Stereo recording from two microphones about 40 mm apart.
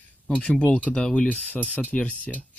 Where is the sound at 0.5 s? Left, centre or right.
Left.